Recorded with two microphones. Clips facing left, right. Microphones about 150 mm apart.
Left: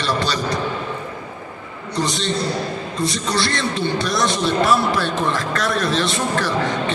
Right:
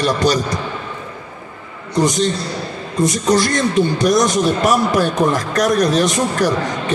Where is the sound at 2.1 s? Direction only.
45° right (ahead or behind).